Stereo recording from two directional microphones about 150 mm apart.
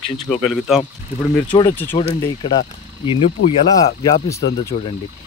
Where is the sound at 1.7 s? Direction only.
15° left (ahead or behind).